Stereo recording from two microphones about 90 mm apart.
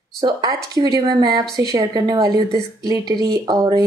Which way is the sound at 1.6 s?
40° right (ahead or behind).